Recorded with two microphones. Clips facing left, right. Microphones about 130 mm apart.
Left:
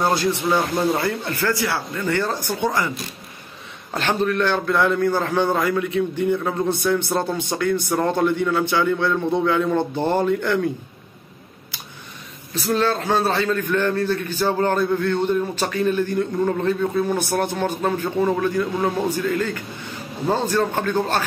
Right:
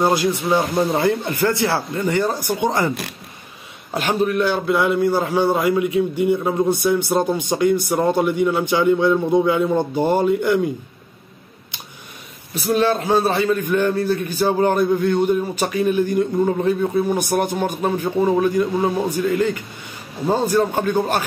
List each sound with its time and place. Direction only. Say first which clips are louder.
0.0 s speech: right 2 dB; 15° right (ahead or behind)
2.0 s a man's voice: right 2 dB; 15° right (ahead or behind)
3.9 s a man's voice: right 2 dB; 10° right (ahead or behind)
12.7 s a man's voice: right 3 dB; 15° right (ahead or behind)